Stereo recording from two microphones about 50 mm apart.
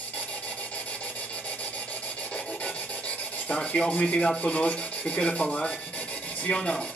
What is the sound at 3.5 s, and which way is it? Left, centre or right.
Rub, left.